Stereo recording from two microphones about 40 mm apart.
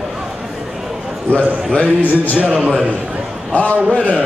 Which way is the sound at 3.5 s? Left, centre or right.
Left.